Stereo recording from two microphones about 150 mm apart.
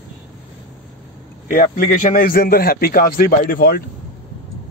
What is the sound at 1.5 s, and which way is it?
A man's voice, 65° left (ahead or behind).